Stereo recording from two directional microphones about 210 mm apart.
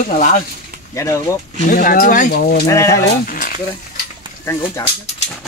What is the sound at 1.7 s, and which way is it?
Speech, 40° left (ahead or behind).